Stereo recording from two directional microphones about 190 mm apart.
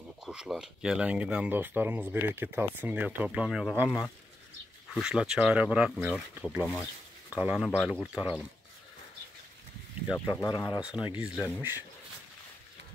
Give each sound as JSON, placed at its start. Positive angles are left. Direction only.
{"t": 0.2, "sound": "speech", "side_deg": -5}
{"t": 10.1, "sound": "speech", "side_deg": 10}
{"t": 10.8, "sound": "speech", "side_deg": -5}